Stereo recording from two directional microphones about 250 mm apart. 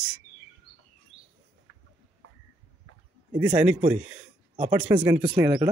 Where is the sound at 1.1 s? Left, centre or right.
Right.